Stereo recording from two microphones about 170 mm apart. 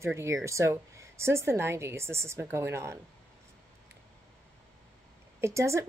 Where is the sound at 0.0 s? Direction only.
15° right (ahead or behind).